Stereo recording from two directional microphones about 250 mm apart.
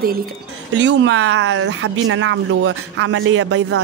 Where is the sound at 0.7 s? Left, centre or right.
Right.